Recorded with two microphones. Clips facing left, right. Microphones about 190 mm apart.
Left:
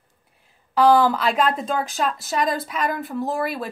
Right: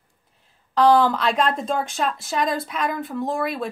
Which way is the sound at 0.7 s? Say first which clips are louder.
Even; 5° left (ahead or behind).